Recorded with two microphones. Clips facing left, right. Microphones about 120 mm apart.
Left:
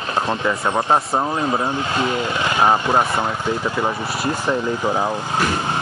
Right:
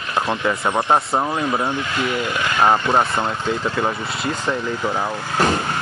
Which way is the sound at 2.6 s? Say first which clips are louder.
Right 1 dB; 10° left (ahead or behind).